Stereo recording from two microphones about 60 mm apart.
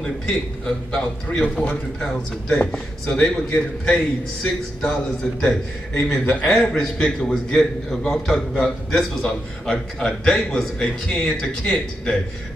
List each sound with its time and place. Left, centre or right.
0.0 s a man's voice: centre
2.5 s a man's voice: centre